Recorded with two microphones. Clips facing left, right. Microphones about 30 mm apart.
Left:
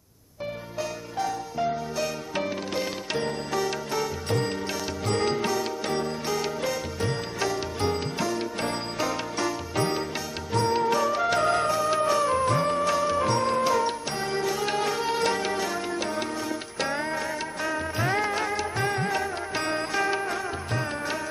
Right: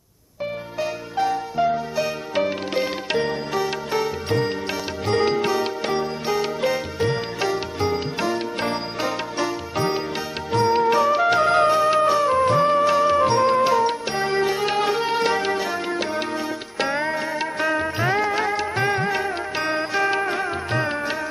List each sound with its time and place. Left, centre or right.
0.7 s music: right